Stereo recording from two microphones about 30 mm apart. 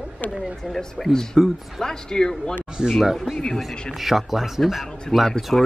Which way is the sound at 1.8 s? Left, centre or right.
Centre.